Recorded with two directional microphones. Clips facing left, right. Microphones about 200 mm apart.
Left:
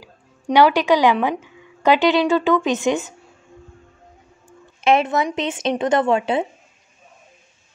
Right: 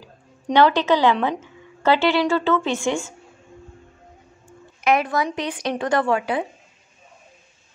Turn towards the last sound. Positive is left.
turn(degrees=25)  # may be behind; listen again after turning